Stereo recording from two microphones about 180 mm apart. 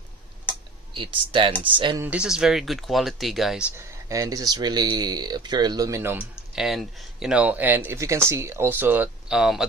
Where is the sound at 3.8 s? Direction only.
20° right (ahead or behind).